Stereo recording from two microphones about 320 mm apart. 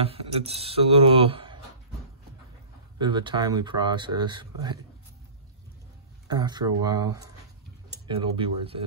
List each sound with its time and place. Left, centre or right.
0.0 s speech: centre
3.0 s speech: centre
6.2 s speech: centre